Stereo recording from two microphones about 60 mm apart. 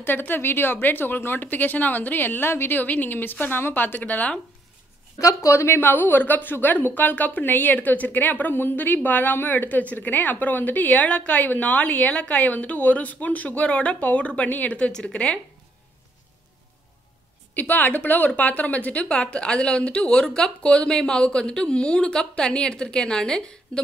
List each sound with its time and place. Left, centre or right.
0.0 s speech: left
5.2 s speech: left
5.8 s a woman's voice: left
14.9 s speech: centre
17.6 s speech: left; by 23.8 s centre